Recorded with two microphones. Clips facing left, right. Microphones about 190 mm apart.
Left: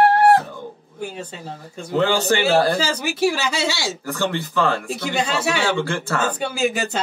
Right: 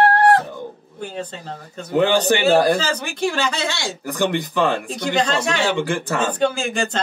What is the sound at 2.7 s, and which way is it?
Speech, 10° left (ahead or behind).